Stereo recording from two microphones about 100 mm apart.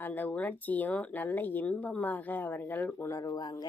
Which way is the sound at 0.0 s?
15° left (ahead or behind).